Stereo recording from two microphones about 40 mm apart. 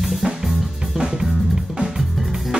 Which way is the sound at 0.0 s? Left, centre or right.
Centre.